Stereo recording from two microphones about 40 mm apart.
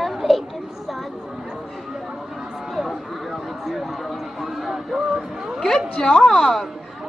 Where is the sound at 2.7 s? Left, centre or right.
Centre.